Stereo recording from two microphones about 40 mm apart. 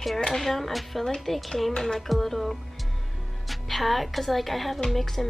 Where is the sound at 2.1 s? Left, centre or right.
Centre.